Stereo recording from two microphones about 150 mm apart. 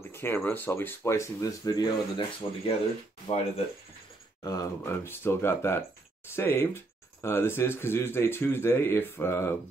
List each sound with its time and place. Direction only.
0.1 s a sound: 15° left (ahead or behind)
0.4 s speech: 10° left (ahead or behind); by 2.7 s 30° left (ahead or behind)
4.4 s speech: 25° left (ahead or behind)